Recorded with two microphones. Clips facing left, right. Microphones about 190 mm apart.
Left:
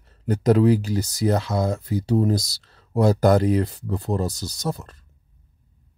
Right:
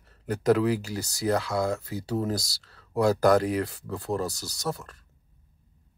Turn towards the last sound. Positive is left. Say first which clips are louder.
# left 3 dB
turn(degrees=20)  # may be behind; listen again after turning